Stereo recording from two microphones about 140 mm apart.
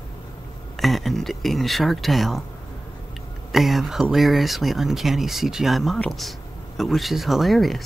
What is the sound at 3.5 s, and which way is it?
Speech, centre (ahead or behind).